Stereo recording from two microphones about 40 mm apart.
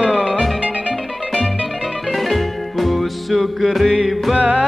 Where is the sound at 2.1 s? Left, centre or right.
Centre.